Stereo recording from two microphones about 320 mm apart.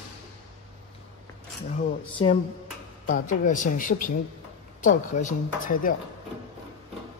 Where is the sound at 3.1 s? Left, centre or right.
Left.